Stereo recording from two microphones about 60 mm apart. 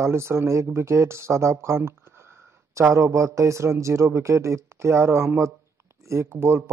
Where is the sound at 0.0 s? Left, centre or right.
Right.